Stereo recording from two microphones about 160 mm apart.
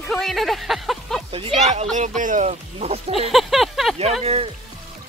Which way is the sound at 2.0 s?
50° right (ahead or behind).